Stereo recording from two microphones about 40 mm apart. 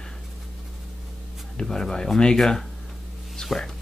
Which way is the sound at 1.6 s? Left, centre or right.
Centre.